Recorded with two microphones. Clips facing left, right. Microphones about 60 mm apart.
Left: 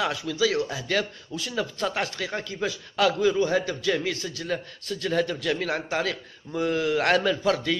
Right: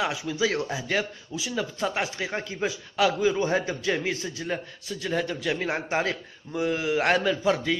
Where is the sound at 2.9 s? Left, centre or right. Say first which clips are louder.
Left 1 dB; centre.